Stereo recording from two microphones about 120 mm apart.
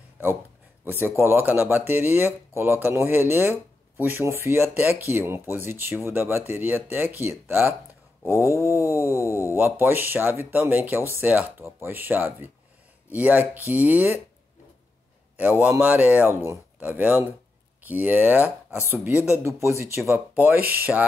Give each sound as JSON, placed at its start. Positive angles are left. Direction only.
{"t": 0.8, "sound": "speech", "side_deg": -20}
{"t": 8.3, "sound": "a sound", "side_deg": -20}
{"t": 9.3, "sound": "speech", "side_deg": 25}
{"t": 9.8, "sound": "speech", "side_deg": -15}
{"t": 15.3, "sound": "speech", "side_deg": -15}